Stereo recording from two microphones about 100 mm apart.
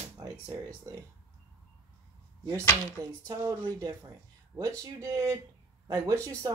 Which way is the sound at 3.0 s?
35° right (ahead or behind).